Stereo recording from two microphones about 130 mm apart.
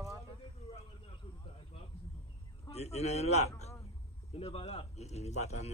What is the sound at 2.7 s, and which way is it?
Speech, 55° left (ahead or behind).